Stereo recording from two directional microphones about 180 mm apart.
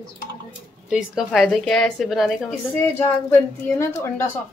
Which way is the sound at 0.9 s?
5° right (ahead or behind).